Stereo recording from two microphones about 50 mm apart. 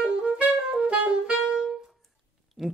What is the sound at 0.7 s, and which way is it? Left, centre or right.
Saxophone, right.